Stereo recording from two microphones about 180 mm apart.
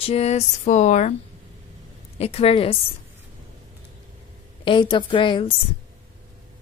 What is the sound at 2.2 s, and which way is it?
Speech, 35° left (ahead or behind).